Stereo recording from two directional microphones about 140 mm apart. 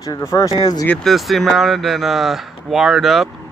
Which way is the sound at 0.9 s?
5° left (ahead or behind).